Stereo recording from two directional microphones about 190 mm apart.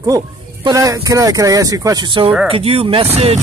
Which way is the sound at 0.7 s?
15° right (ahead or behind).